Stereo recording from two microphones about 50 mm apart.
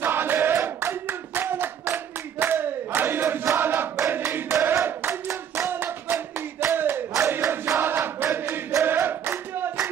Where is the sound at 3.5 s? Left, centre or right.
Right.